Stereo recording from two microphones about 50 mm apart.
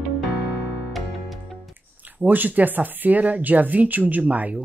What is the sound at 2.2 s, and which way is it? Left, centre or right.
Speech, right.